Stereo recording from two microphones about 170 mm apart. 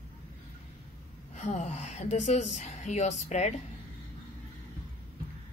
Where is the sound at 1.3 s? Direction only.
40° left (ahead or behind).